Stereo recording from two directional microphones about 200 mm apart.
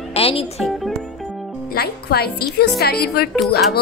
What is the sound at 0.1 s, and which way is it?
Music, 30° left (ahead or behind).